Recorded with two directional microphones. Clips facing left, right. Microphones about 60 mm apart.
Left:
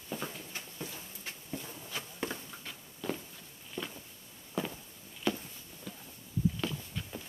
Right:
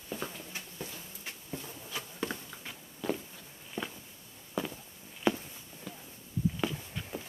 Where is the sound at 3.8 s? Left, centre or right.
Right.